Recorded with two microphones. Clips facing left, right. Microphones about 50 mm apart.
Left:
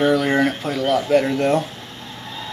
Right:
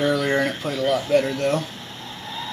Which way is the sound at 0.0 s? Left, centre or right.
Centre.